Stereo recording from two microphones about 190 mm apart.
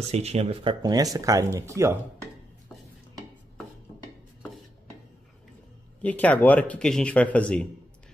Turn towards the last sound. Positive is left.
turn(degrees=5)  # may be behind; listen again after turning